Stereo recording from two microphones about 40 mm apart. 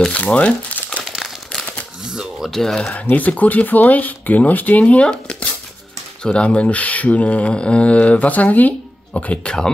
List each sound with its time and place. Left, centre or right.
0.1 s speech: left
2.4 s speech: centre
3.1 s speech: left
4.8 s speech: left
5.1 s a sound: left
6.2 s speech: left
9.1 s speech: left